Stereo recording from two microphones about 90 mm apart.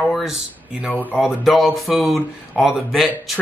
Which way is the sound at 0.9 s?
20° left (ahead or behind).